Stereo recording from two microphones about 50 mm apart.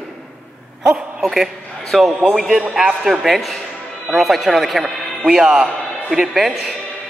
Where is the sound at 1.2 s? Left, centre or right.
Centre.